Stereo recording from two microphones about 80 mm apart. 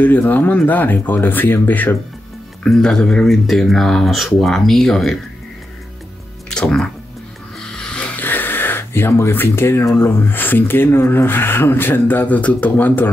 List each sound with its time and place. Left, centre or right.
0.0 s speech: left
2.6 s speech: centre
6.5 s speech: centre
8.2 s a sound: left
9.9 s speech: left